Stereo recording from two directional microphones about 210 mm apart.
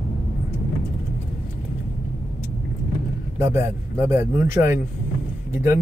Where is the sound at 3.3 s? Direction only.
10° right (ahead or behind).